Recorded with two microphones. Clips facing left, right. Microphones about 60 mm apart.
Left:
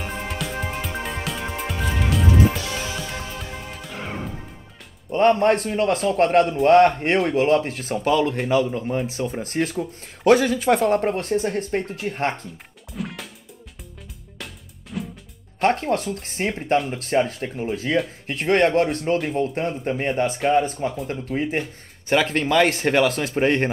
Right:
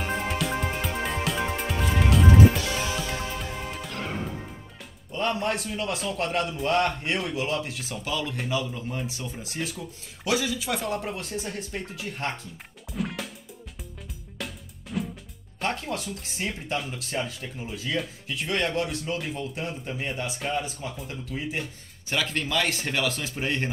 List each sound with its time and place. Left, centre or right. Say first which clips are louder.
0.0 s music: right 1 dB; centre
5.1 s speech: left 10 dB; left
9.3 s speech: left 9 dB; left
12.9 s music: even; centre
14.4 s music: right 2 dB; centre
15.6 s speech: left 9 dB; left